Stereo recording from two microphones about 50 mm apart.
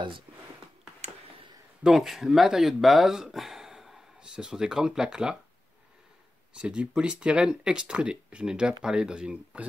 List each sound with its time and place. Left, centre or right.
1.8 s speech: centre
6.5 s speech: centre